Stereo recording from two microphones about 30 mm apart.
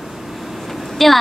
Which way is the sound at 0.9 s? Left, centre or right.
Centre.